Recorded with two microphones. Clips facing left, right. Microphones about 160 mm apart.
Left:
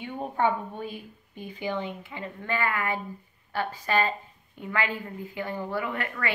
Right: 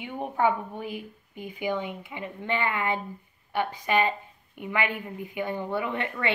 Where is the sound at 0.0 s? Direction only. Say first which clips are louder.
Right 1 dB; 15° right (ahead or behind).